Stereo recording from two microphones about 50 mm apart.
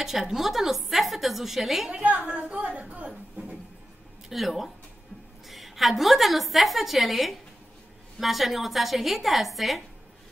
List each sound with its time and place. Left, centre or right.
0.2 s a woman's voice: centre
1.9 s a woman's voice: right
4.3 s a woman's voice: centre